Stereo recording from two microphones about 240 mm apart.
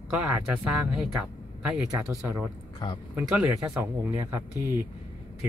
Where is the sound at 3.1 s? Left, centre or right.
Centre.